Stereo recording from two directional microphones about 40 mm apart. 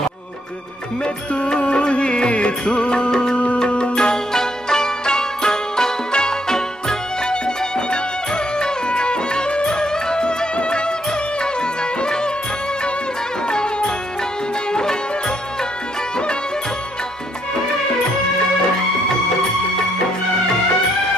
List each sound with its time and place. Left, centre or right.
1.0 s music: left
13.5 s music: left